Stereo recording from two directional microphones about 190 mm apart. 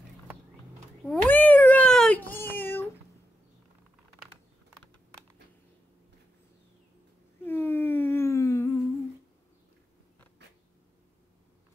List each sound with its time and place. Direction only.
1.0 s cat: 10° left (ahead or behind)
7.4 s humming: 10° left (ahead or behind)
10.4 s a sound: 65° right (ahead or behind)